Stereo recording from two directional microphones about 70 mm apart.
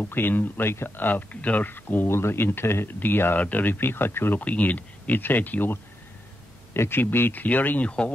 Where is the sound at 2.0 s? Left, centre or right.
Left.